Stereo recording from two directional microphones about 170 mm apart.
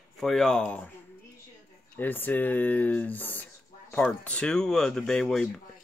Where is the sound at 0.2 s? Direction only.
Centre (ahead or behind).